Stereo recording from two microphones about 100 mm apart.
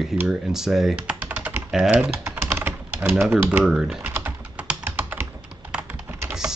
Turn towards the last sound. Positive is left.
turn(degrees=-5)  # may be behind; listen again after turning